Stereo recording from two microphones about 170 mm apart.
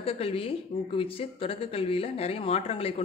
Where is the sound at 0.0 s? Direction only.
35° left (ahead or behind).